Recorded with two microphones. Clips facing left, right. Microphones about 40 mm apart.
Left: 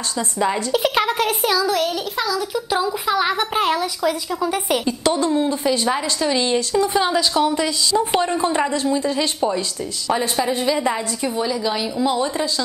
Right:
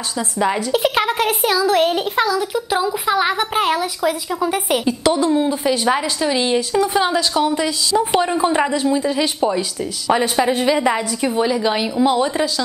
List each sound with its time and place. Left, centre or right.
0.4 s a woman's voice: centre
1.7 s a woman's voice: right
2.7 s a woman's voice: centre; by 12.3 s right